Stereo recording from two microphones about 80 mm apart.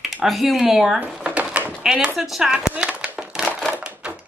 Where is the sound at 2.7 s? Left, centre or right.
Centre.